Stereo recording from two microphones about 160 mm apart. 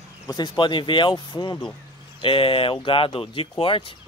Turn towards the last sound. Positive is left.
turn(degrees=35)  # may be behind; listen again after turning